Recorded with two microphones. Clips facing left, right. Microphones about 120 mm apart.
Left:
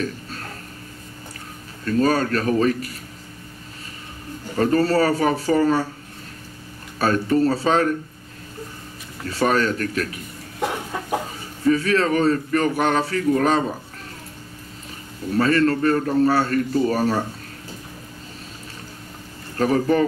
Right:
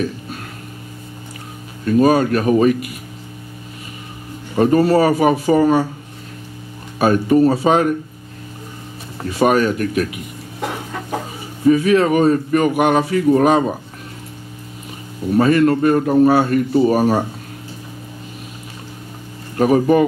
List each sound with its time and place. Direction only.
1.9 s speech: 15° right (ahead or behind)
4.6 s speech: 15° right (ahead or behind)
7.0 s speech: 15° right (ahead or behind)
9.3 s speech: 15° right (ahead or behind)
11.6 s speech: 15° right (ahead or behind)
15.2 s speech: 15° right (ahead or behind)
19.5 s speech: 15° right (ahead or behind)